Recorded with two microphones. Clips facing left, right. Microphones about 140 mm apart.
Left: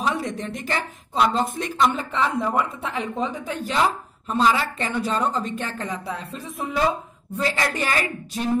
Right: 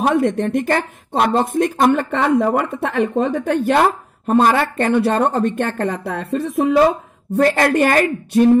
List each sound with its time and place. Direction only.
0.0 s a woman's voice: 60° right (ahead or behind)
1.9 s a woman's voice: 70° right (ahead or behind)